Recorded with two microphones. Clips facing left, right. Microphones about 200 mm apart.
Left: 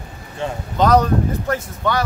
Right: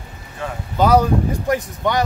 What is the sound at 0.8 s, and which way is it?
Speech, 10° right (ahead or behind).